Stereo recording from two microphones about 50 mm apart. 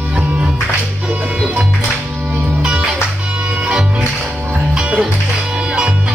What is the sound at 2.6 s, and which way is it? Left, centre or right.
Music, centre.